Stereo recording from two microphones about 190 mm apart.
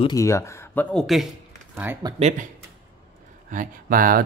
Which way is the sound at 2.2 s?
35° right (ahead or behind).